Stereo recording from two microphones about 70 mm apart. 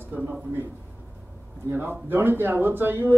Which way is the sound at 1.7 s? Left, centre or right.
Right.